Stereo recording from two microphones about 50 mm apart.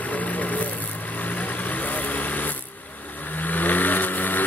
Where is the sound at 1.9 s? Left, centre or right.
Left.